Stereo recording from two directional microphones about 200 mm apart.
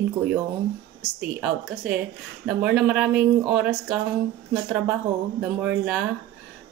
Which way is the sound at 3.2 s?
50° right (ahead or behind).